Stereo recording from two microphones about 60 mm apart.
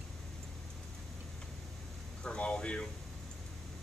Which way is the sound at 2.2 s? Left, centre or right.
Centre.